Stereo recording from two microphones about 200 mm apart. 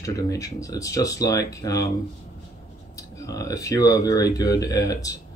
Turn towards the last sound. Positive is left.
turn(degrees=15)  # may be behind; listen again after turning